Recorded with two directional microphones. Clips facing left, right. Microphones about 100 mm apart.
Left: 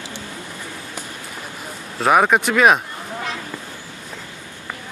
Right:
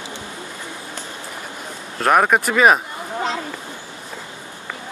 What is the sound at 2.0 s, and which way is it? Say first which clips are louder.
Speech: even; centre (ahead or behind).